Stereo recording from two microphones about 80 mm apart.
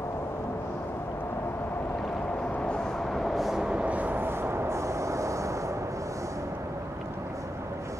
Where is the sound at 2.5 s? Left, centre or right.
Centre; by 5.8 s right.